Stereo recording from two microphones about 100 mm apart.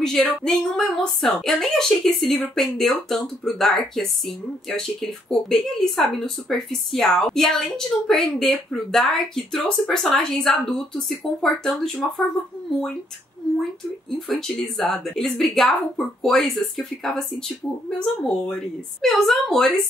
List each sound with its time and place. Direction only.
0.0 s speech: 5° left (ahead or behind)
14.1 s speech: centre (ahead or behind)